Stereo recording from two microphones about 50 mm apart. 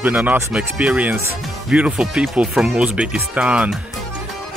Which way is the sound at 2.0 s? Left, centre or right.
Centre.